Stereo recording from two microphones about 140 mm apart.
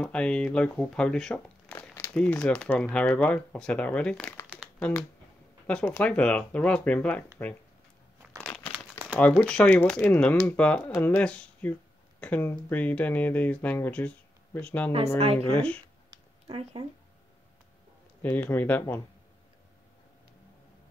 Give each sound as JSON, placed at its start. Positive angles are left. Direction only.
{"t": 0.0, "sound": "speech", "side_deg": 5}
{"t": 8.4, "sound": "crumpling", "side_deg": 5}
{"t": 9.4, "sound": "speech", "side_deg": 10}
{"t": 15.1, "sound": "speech", "side_deg": -45}
{"t": 15.5, "sound": "speech", "side_deg": 10}
{"t": 16.4, "sound": "speech", "side_deg": -40}
{"t": 18.2, "sound": "speech", "side_deg": 10}